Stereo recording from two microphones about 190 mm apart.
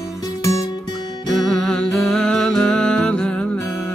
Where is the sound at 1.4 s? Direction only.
Centre (ahead or behind).